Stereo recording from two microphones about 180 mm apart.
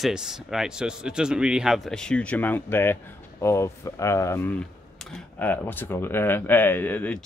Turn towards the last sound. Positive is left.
turn(degrees=10)  # may be behind; listen again after turning